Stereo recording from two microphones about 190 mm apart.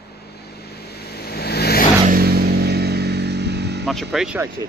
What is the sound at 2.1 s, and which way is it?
Vehicle, 55° right (ahead or behind).